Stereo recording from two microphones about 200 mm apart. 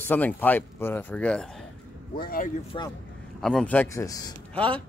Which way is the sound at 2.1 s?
45° left (ahead or behind).